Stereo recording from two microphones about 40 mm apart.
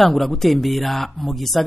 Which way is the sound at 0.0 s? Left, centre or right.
Centre.